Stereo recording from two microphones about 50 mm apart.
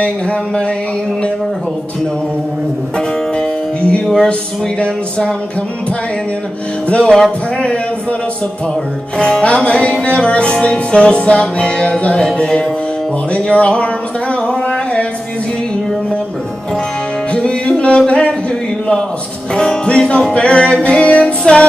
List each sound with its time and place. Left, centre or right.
0.0 s music: left
3.3 s music: left
6.9 s music: centre
9.4 s music: left
17.3 s music: left
19.5 s music: centre